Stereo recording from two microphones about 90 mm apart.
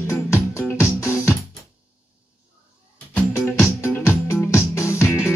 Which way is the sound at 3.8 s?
30° left (ahead or behind).